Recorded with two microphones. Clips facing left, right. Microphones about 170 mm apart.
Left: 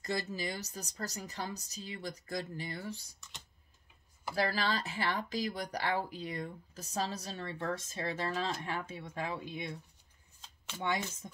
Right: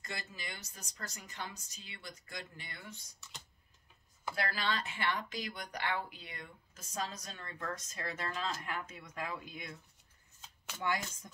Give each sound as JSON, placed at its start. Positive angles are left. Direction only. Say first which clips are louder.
{"t": 0.0, "sound": "speech", "louder": "left 10 dB", "side_deg": 35}
{"t": 4.5, "sound": "speech", "louder": "left 3 dB", "side_deg": 35}
{"t": 10.8, "sound": "speech", "louder": "left 2 dB", "side_deg": 25}